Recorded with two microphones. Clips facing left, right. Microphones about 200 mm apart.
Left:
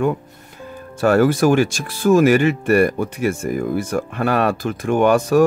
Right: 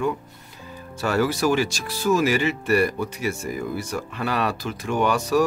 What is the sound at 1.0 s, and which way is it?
Speech, 50° left (ahead or behind).